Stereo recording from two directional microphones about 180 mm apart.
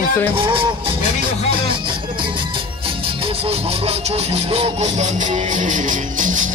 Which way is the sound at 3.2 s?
35° right (ahead or behind).